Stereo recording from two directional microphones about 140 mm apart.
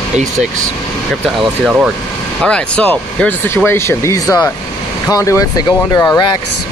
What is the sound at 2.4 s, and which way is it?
Speech, 10° left (ahead or behind).